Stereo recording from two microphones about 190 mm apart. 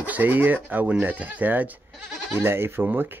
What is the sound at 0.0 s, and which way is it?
Speech, 10° right (ahead or behind).